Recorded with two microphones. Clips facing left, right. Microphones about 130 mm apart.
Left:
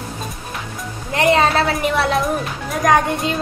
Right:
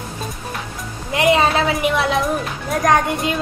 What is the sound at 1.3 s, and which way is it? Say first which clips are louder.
A woman's voice: even; centre (ahead or behind).